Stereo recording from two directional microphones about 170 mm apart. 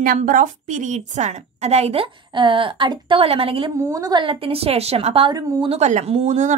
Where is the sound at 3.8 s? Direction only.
20° right (ahead or behind).